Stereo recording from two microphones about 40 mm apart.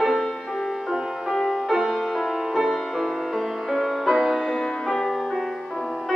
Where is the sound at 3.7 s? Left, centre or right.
Centre.